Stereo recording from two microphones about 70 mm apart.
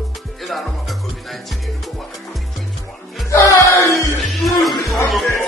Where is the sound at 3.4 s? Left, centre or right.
Left.